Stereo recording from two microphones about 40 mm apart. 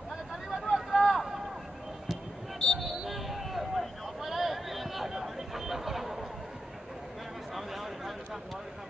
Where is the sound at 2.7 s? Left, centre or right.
Centre.